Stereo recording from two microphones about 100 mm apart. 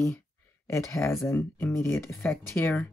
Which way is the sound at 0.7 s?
30° left (ahead or behind).